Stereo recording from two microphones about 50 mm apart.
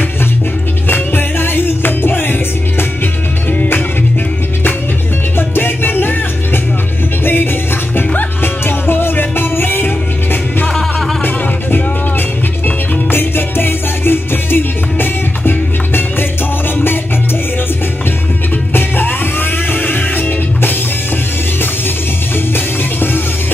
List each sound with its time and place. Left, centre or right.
0.8 s music: left
5.5 s music: left
8.1 s music: left
12.6 s music: left
18.7 s music: left